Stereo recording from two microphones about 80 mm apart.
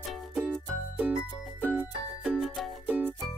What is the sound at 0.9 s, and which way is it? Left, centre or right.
Music, centre.